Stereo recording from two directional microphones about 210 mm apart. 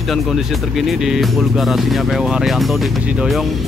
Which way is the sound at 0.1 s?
Centre (ahead or behind).